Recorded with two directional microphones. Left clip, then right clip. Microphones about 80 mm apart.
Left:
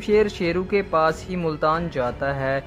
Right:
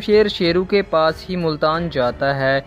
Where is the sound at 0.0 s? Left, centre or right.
Right.